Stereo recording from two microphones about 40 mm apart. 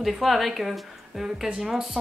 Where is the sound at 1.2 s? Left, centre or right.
Centre.